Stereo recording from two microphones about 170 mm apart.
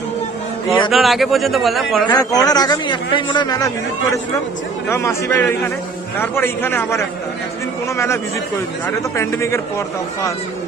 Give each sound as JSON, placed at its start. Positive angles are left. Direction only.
{"t": 0.9, "sound": "a man's voice", "side_deg": 0}
{"t": 2.0, "sound": "a man's voice", "side_deg": 20}
{"t": 9.1, "sound": "a man's voice", "side_deg": 15}